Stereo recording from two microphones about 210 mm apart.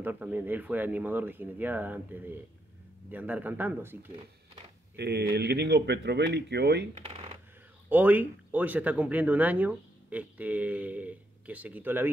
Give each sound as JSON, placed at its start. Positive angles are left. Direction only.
{"t": 0.0, "sound": "speech", "side_deg": -10}
{"t": 4.9, "sound": "speech", "side_deg": -50}
{"t": 7.9, "sound": "speech", "side_deg": -10}